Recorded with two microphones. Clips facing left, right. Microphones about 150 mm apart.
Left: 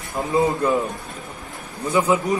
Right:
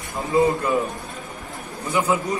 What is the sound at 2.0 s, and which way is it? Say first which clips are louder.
Speech: left 2 dB; 20° left (ahead or behind).